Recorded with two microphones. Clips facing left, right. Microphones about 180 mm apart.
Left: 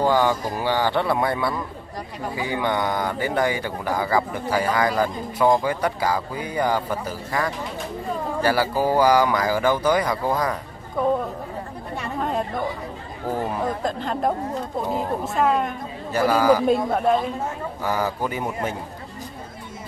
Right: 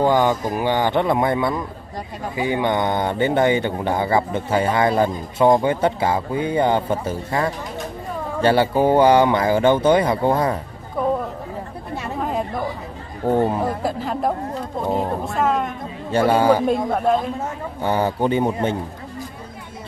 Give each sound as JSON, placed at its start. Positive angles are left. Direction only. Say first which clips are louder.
{"t": 0.0, "sound": "a man's voice", "louder": "right 3 dB", "side_deg": -20}
{"t": 12.2, "sound": "chatter", "louder": "right 1 dB", "side_deg": -5}
{"t": 13.3, "sound": "a man's voice", "louder": "right 8 dB", "side_deg": -25}
{"t": 13.6, "sound": "speech", "louder": "right 2 dB", "side_deg": -5}
{"t": 16.1, "sound": "a man's voice", "louder": "right 2 dB", "side_deg": -25}
{"t": 16.6, "sound": "speech", "louder": "right 1 dB", "side_deg": 0}
{"t": 17.8, "sound": "a man's voice", "louder": "right 5 dB", "side_deg": -25}